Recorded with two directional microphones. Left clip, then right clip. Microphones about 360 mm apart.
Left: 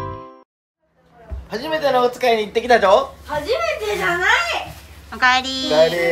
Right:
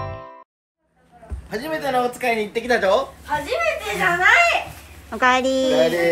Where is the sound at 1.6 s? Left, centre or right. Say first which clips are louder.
Left 4 dB; left.